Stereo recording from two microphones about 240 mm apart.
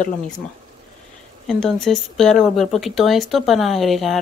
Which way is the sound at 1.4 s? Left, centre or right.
Centre.